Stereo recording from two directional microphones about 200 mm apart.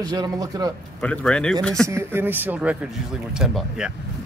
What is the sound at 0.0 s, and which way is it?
Speech, 20° right (ahead or behind).